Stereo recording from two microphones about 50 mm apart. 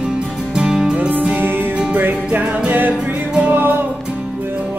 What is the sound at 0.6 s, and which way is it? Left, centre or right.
Music, centre.